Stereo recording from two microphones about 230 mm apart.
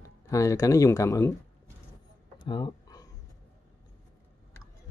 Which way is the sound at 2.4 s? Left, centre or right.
Centre.